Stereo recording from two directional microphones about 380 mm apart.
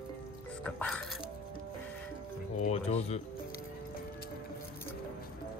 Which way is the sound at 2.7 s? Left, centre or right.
Centre.